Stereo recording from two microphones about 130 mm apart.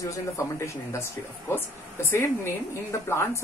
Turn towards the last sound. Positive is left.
turn(degrees=20)  # may be behind; listen again after turning